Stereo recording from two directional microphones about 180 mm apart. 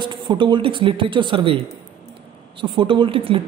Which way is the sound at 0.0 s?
25° right (ahead or behind).